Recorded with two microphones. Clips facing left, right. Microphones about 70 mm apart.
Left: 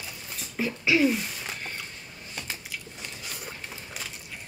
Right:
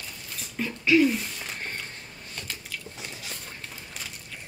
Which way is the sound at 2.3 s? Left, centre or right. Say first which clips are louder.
Left 1 dB; centre.